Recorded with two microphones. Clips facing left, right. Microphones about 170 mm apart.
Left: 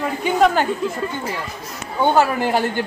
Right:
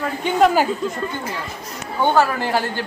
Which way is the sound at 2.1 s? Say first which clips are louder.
Left 1 dB; 15° left (ahead or behind).